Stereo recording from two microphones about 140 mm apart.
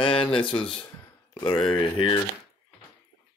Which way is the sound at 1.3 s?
30° left (ahead or behind).